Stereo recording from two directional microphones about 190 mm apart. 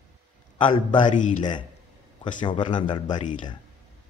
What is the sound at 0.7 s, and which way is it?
Speech, 25° left (ahead or behind).